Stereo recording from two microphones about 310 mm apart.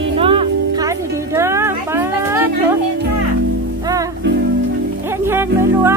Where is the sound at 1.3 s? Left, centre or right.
Centre.